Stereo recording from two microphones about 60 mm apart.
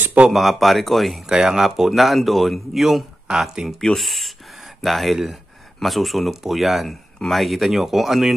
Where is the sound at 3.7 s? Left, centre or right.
Centre.